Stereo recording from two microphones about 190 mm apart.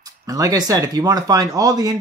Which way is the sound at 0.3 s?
20° right (ahead or behind).